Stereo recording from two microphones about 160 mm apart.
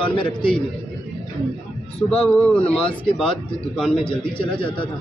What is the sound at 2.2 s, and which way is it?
A man's voice, 10° left (ahead or behind).